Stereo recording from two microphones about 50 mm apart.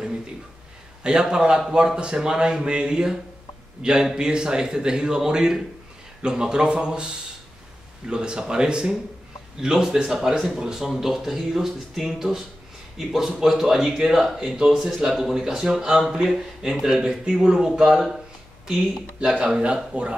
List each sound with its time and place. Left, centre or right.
1.0 s speech: centre
8.1 s speech: centre
19.1 s speech: centre